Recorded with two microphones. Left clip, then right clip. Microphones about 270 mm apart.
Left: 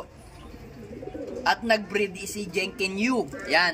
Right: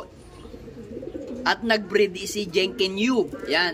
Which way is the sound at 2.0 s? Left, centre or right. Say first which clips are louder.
Right 6 dB; right.